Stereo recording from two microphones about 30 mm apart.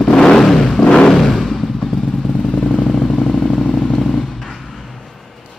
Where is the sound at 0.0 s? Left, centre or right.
Left.